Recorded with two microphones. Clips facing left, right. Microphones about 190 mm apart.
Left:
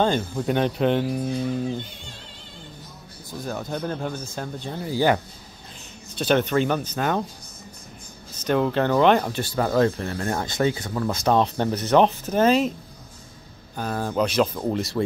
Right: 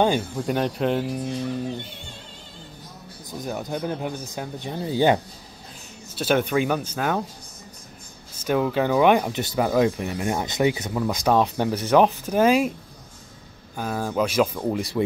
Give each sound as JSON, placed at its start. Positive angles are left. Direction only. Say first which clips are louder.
{"t": 0.4, "sound": "speech", "louder": "left 2 dB", "side_deg": 0}
{"t": 3.3, "sound": "speech", "louder": "even", "side_deg": -15}
{"t": 6.1, "sound": "speech", "louder": "left 1 dB", "side_deg": -5}
{"t": 8.5, "sound": "speech", "louder": "even", "side_deg": -5}
{"t": 13.7, "sound": "speech", "louder": "even", "side_deg": -5}